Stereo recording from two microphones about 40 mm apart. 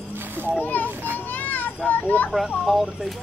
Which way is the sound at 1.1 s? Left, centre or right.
Left.